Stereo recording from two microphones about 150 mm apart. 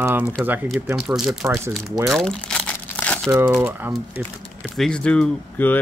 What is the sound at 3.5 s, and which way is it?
Speech, 10° right (ahead or behind).